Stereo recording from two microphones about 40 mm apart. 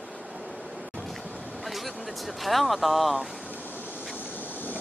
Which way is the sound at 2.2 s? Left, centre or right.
Centre.